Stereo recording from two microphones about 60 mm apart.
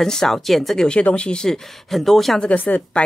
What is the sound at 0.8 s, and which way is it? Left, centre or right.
Speech, centre.